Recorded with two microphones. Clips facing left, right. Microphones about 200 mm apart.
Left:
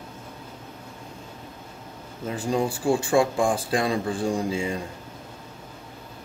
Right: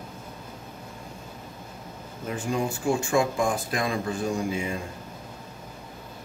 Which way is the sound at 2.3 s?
35° left (ahead or behind).